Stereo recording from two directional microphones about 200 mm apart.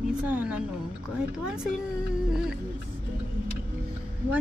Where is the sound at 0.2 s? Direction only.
5° right (ahead or behind).